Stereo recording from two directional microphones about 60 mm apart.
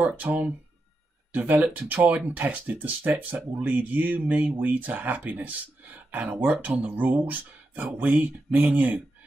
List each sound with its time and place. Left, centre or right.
0.0 s speech: right